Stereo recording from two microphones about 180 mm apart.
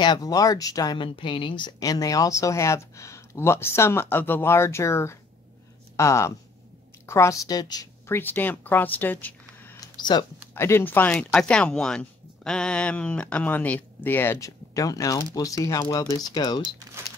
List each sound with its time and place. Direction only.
0.0 s speech: 20° left (ahead or behind)
9.8 s a sound: 25° left (ahead or behind)
10.5 s speech: 15° left (ahead or behind)